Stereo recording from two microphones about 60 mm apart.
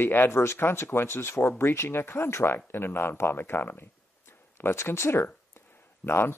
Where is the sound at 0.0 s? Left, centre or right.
Left.